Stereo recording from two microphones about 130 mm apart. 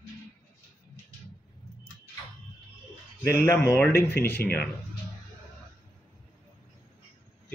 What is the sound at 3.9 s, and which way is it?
Speech, 15° left (ahead or behind).